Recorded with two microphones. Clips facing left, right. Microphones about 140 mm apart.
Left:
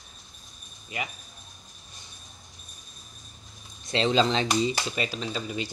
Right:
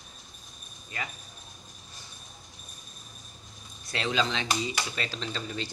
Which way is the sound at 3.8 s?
25° left (ahead or behind).